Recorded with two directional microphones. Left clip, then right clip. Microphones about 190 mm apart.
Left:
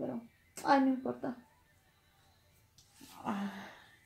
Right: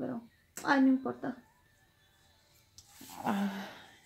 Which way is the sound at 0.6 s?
40° right (ahead or behind).